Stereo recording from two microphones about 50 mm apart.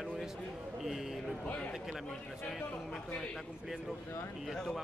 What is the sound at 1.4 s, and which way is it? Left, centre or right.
Speech, left.